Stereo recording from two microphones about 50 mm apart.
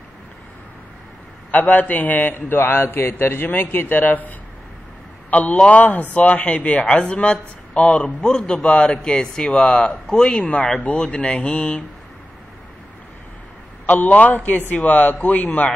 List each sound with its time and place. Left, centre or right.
1.5 s a man's voice: left
5.3 s a man's voice: left
13.8 s a man's voice: left